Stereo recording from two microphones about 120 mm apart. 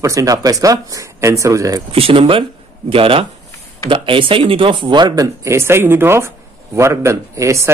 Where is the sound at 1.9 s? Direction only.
50° right (ahead or behind).